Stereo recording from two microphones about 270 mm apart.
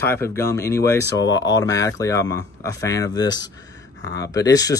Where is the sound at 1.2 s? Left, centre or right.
Left.